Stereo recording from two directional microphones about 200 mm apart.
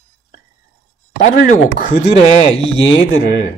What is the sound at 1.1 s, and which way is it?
A man's voice, 40° left (ahead or behind).